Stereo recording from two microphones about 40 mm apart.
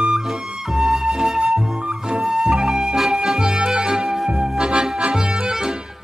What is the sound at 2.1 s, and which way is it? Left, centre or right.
Music, centre.